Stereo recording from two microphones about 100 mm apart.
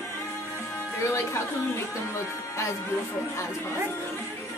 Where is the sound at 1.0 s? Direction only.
30° left (ahead or behind).